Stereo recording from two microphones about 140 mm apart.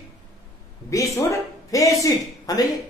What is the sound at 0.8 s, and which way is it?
A woman's voice, 20° left (ahead or behind).